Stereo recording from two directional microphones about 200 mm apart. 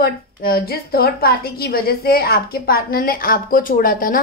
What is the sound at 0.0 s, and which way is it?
A woman's voice, 50° left (ahead or behind).